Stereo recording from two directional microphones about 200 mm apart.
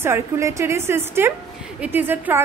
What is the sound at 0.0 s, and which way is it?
A woman's voice, 15° right (ahead or behind).